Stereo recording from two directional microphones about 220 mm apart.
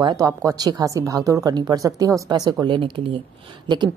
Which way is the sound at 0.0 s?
20° right (ahead or behind).